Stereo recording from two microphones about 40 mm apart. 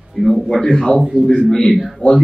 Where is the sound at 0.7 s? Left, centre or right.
Centre.